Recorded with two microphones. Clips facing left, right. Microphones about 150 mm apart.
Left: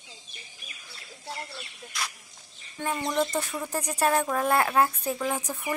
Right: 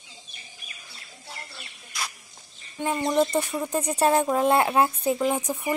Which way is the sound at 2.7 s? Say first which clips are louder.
Right 4 dB; 15° right (ahead or behind).